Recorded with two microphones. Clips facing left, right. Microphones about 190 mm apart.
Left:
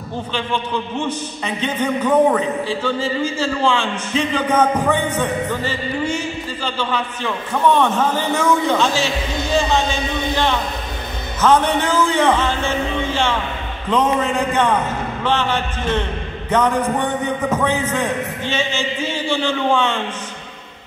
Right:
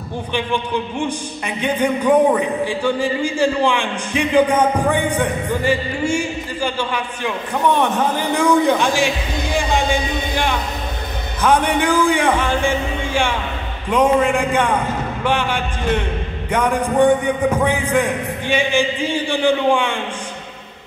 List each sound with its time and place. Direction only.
0.3 s a man's voice: 15° right (ahead or behind)